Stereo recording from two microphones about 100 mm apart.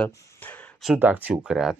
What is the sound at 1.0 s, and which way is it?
Speech, 15° right (ahead or behind).